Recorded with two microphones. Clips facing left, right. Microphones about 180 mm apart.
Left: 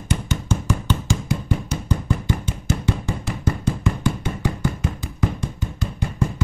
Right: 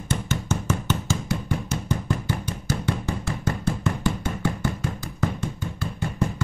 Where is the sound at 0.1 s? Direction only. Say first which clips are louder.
Left 2 dB; 15° left (ahead or behind).